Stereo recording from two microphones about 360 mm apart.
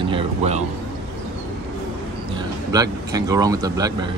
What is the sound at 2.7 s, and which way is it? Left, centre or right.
Speech, centre.